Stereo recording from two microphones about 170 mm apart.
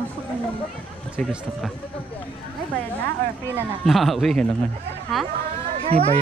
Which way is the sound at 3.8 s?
Centre (ahead or behind).